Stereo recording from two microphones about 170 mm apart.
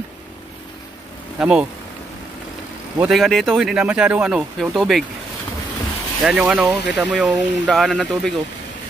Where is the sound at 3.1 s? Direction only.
Centre (ahead or behind).